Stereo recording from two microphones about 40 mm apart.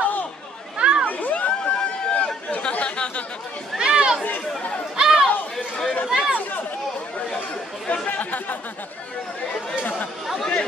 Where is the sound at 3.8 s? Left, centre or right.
Right.